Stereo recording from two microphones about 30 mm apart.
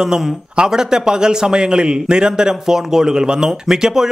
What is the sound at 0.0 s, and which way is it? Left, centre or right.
A man's voice, centre.